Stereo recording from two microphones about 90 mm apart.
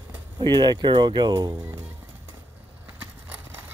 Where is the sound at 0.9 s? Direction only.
65° right (ahead or behind).